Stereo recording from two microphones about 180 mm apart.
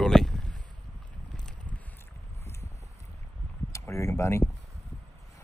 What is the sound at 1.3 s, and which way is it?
Boat, 5° left (ahead or behind).